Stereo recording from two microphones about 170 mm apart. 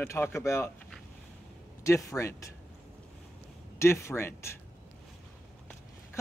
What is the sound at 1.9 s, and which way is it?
Speech, 20° left (ahead or behind).